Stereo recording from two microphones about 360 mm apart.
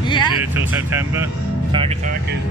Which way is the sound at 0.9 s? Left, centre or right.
Centre.